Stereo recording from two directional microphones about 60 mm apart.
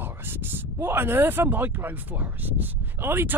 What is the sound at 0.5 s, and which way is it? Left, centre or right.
Speech, right.